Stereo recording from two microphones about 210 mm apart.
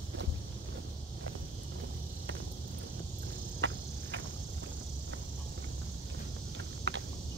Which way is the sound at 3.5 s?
60° right (ahead or behind).